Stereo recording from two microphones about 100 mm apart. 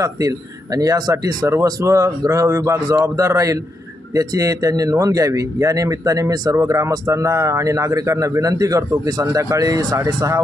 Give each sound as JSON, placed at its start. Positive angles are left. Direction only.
{"t": 0.7, "sound": "speech", "side_deg": -40}